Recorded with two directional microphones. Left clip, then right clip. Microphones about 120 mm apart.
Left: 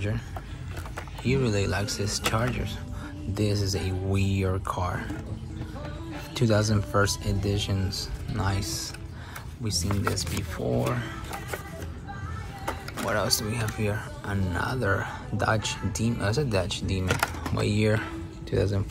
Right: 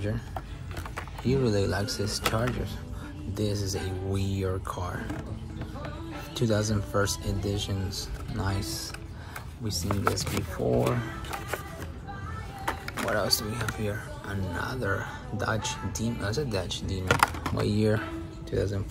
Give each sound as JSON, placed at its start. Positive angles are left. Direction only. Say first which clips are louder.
{"t": 1.2, "sound": "speech", "louder": "even", "side_deg": -45}
{"t": 3.3, "sound": "speech", "louder": "left 3 dB", "side_deg": -20}
{"t": 6.3, "sound": "speech", "louder": "left 3 dB", "side_deg": -25}
{"t": 9.8, "sound": "speech", "louder": "right 5 dB", "side_deg": -50}
{"t": 12.9, "sound": "speech", "louder": "left 1 dB", "side_deg": -25}